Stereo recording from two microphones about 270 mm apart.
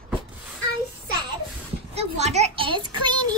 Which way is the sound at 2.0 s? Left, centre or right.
Right.